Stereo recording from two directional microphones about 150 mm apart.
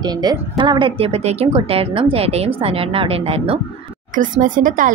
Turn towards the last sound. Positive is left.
turn(degrees=-65)  # may be behind; listen again after turning